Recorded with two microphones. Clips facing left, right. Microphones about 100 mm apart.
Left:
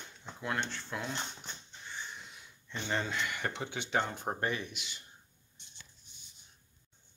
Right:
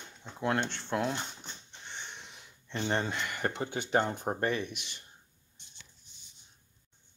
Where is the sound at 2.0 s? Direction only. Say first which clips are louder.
Left 1 dB; 70° right (ahead or behind).